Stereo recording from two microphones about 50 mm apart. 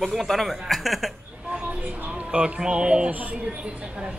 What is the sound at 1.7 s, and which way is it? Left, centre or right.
Music, right.